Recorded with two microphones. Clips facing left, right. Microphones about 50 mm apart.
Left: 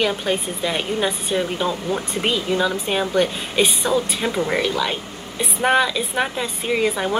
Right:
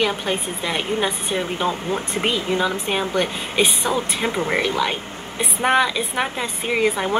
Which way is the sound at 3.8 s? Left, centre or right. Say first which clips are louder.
Left 1 dB; right.